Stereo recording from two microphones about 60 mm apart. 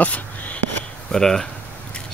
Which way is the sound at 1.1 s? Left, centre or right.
Centre.